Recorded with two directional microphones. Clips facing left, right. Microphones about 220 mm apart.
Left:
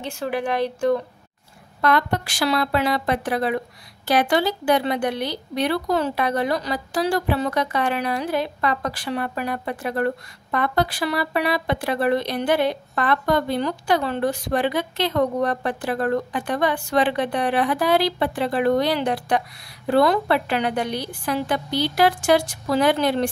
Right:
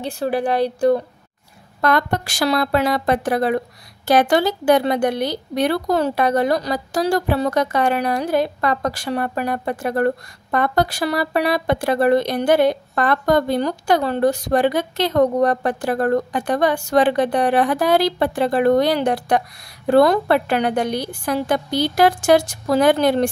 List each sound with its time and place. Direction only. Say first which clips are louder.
0.0 s a woman's voice: right 4 dB; 35° right (ahead or behind)